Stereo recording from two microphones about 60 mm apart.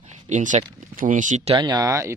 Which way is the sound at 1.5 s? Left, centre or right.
Right.